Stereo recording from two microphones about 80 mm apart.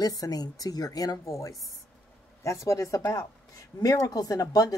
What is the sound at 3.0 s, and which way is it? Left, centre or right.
Speech, left.